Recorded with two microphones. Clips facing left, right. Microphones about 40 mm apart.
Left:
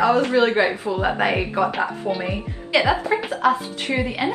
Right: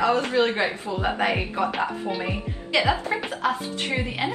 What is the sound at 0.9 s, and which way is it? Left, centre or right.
Speech, centre.